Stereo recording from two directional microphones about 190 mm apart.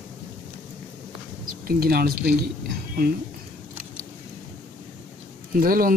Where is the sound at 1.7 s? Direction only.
55° right (ahead or behind).